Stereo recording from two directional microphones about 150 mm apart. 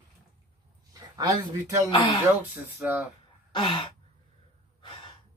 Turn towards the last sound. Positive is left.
turn(degrees=30)  # may be behind; listen again after turning